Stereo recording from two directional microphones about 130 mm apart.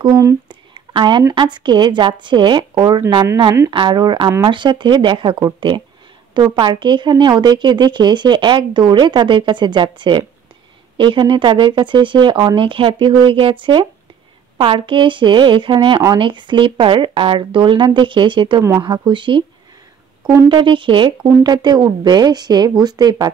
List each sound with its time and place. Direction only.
0.0 s speech: 25° right (ahead or behind)
0.5 s a sound: 35° right (ahead or behind)
1.3 s speech: 35° right (ahead or behind)
18.6 s speech: 25° right (ahead or behind)
18.9 s speech: 35° right (ahead or behind)
20.4 s speech: 40° right (ahead or behind)